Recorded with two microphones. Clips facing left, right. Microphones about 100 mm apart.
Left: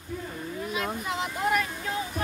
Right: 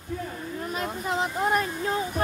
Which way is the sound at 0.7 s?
35° right (ahead or behind).